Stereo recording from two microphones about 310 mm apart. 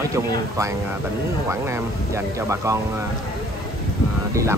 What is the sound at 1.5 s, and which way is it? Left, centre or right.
Speech, centre.